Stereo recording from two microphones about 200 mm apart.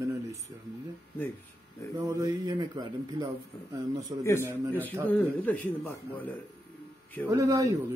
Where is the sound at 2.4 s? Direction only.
20° right (ahead or behind).